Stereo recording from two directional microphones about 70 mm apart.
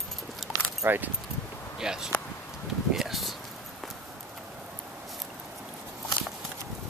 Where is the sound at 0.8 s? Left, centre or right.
Right.